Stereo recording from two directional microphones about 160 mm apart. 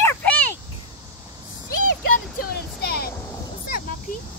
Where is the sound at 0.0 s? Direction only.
10° left (ahead or behind).